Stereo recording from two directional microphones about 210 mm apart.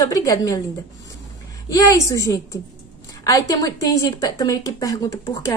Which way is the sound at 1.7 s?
15° left (ahead or behind).